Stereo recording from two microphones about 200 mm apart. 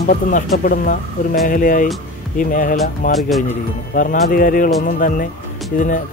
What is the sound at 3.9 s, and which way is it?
Speech, 45° left (ahead or behind).